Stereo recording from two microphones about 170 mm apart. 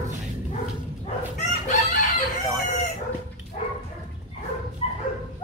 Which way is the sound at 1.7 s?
45° left (ahead or behind).